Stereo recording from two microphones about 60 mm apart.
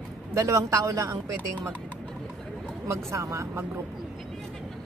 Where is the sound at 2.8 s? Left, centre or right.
Right.